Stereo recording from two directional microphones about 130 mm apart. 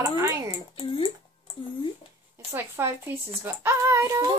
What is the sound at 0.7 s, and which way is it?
Speech, 45° left (ahead or behind).